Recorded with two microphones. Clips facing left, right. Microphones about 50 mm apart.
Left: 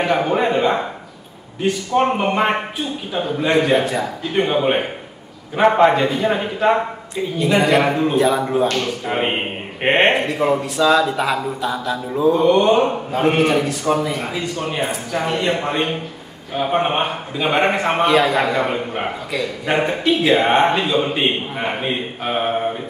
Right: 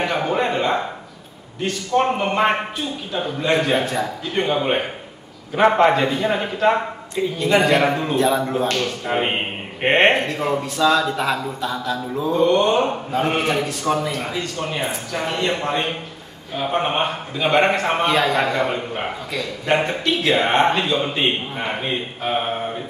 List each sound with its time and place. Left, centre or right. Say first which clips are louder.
0.0 s a man's voice: left 3 dB; centre
18.4 s a man's voice: left 2 dB; centre